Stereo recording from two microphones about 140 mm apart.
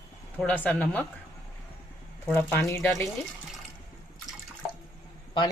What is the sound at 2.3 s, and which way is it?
Speech, 15° left (ahead or behind).